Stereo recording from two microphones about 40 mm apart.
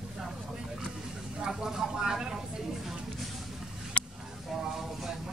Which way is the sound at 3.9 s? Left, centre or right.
Left.